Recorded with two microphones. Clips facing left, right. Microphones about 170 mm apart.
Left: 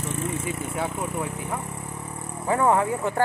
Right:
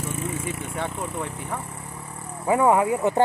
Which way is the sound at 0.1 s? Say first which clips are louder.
Left 4 dB; centre (ahead or behind).